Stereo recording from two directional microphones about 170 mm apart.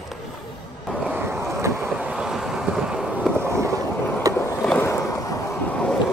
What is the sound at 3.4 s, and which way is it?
Skateboard, 15° right (ahead or behind).